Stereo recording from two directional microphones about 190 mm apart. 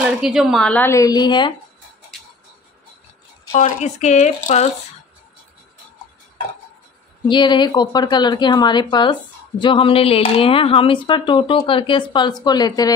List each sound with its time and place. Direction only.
0.0 s a woman's voice: 5° right (ahead or behind); by 1.5 s 25° left (ahead or behind)
3.5 s speech: 35° left (ahead or behind)
7.2 s a woman's voice: 25° left (ahead or behind)